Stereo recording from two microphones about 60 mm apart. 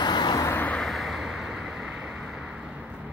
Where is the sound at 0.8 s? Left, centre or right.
Centre.